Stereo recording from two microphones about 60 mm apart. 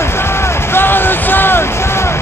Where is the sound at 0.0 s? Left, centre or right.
Left.